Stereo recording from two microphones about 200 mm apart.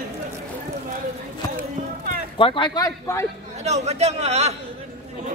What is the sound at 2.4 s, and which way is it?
Speech, 25° left (ahead or behind).